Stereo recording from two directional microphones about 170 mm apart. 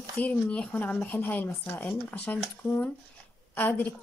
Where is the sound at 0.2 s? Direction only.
10° left (ahead or behind).